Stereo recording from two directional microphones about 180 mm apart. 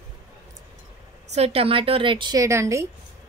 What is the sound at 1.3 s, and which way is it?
A woman's voice, 35° right (ahead or behind).